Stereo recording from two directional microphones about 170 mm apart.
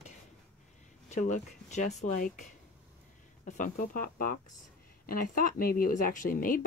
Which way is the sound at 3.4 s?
50° left (ahead or behind).